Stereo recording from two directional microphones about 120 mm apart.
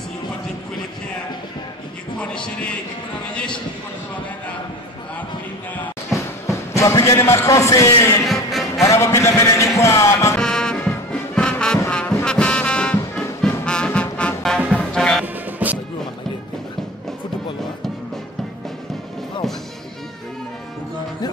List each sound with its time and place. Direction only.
2.1 s a man's voice: 10° left (ahead or behind)
6.1 s music: 25° left (ahead or behind)
8.3 s music: centre (ahead or behind)
8.8 s speech: 25° left (ahead or behind)
10.3 s music: 5° left (ahead or behind)
15.2 s music: 15° right (ahead or behind)